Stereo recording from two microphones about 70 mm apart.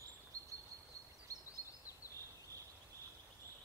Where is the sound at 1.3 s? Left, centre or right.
Right.